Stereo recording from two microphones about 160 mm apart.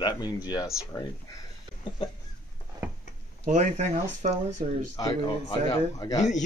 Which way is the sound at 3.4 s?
50° right (ahead or behind).